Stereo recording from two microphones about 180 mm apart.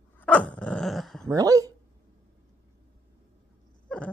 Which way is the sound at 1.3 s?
20° right (ahead or behind).